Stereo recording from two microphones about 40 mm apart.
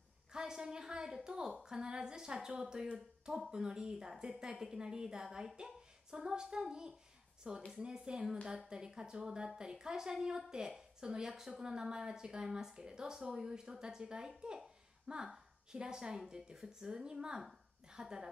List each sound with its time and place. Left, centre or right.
0.3 s a woman's voice: centre
15.2 s a sound: centre
15.8 s a woman's voice: centre